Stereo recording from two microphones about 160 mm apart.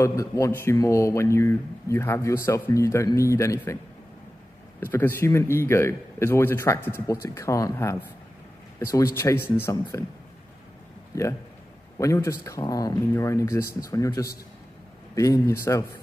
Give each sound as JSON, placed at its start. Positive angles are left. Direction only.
{"t": 0.0, "sound": "speech", "side_deg": 20}
{"t": 4.7, "sound": "speech", "side_deg": 15}
{"t": 11.1, "sound": "speech", "side_deg": 20}